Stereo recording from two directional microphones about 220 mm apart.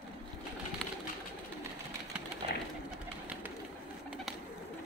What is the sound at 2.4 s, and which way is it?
Bird, 25° right (ahead or behind).